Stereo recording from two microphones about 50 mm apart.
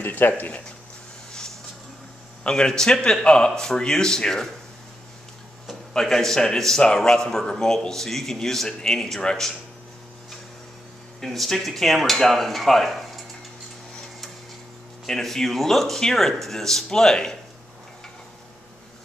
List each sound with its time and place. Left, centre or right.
0.0 s speech: left
2.4 s a man's voice: centre
5.9 s a man's voice: centre
11.1 s speech: centre
15.0 s a man's voice: centre